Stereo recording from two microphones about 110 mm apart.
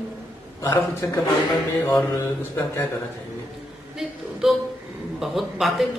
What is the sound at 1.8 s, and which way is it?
Mantra, 30° left (ahead or behind).